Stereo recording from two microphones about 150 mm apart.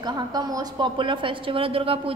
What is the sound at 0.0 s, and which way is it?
A woman's voice, 25° right (ahead or behind).